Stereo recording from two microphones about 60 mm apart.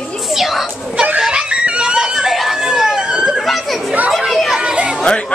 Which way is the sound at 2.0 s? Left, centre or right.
Centre.